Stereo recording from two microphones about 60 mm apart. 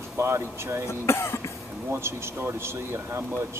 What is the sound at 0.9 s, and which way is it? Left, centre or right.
Speech, left.